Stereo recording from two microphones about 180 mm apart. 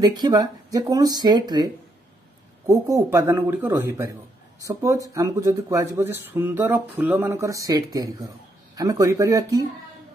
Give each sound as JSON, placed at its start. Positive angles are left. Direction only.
{"t": 0.0, "sound": "speech", "side_deg": -20}